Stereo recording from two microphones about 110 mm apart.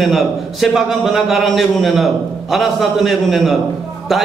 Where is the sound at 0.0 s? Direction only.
Centre (ahead or behind).